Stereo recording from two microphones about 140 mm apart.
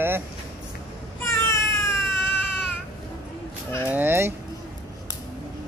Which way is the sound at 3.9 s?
15° right (ahead or behind).